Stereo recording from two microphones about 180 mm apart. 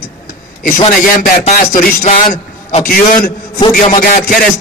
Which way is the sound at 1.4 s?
45° left (ahead or behind).